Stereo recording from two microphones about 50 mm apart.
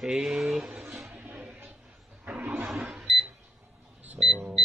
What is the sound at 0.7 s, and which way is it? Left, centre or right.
Speech, centre.